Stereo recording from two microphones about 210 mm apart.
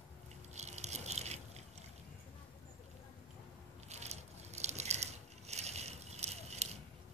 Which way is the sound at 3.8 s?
30° right (ahead or behind).